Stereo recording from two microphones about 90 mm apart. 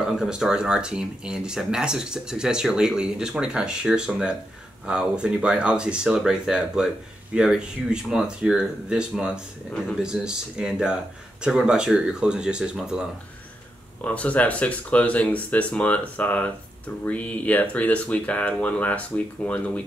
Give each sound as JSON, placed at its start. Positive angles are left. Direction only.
{"t": 0.0, "sound": "speech", "side_deg": -5}
{"t": 14.0, "sound": "speech", "side_deg": 15}